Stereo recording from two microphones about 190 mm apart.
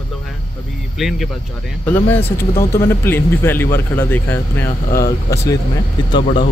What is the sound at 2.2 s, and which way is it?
Speech, 15° left (ahead or behind).